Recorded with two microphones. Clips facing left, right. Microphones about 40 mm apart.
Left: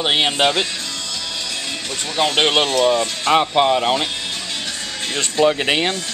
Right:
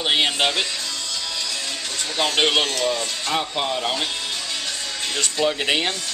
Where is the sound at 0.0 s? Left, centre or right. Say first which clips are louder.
Left 3 dB; centre.